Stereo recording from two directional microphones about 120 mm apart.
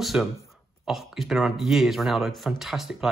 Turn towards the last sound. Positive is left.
turn(degrees=0)  # may be behind; listen again after turning